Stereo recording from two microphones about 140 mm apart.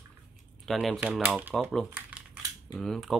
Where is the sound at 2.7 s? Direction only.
Centre (ahead or behind).